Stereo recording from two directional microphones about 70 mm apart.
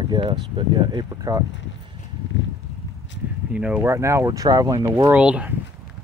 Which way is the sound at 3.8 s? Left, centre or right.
Right.